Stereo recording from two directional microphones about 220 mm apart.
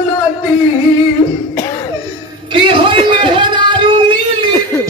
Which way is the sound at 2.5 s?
25° right (ahead or behind).